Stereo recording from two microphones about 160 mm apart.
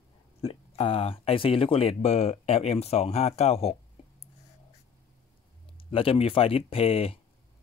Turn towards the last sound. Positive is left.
turn(degrees=35)  # may be behind; listen again after turning